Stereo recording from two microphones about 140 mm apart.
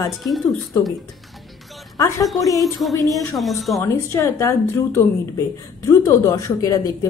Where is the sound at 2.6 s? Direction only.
Centre (ahead or behind).